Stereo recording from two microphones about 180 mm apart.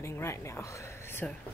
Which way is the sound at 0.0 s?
15° left (ahead or behind).